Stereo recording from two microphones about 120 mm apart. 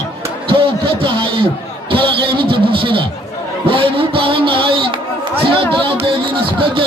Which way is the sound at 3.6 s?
50° right (ahead or behind).